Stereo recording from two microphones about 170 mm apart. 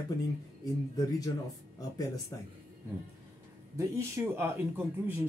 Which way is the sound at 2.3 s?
20° left (ahead or behind).